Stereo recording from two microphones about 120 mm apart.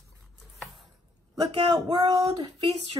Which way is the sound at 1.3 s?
35° right (ahead or behind).